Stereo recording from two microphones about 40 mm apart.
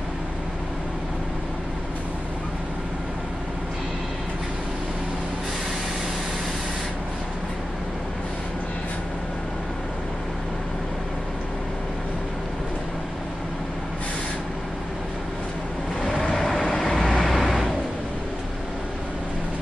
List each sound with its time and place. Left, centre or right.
16.0 s vehicle: centre